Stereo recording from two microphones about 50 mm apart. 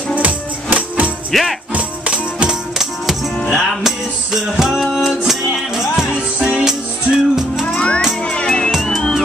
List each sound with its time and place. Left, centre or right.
0.2 s music: right
1.3 s music: centre
1.7 s music: right
3.4 s music: centre
7.6 s music: left
8.8 s music: centre